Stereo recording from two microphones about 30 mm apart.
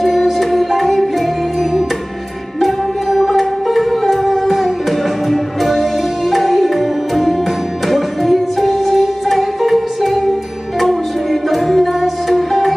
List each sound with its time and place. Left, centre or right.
0.0 s music: centre
11.5 s music: centre